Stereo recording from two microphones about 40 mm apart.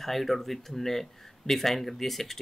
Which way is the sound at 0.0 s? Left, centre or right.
Centre.